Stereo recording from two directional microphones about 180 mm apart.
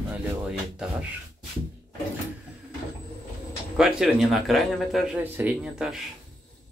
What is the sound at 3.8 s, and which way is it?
Speech, centre (ahead or behind).